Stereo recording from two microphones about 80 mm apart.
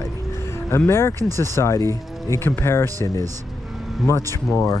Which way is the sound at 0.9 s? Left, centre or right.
Left.